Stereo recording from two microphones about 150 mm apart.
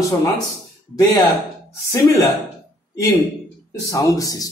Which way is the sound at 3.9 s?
20° left (ahead or behind).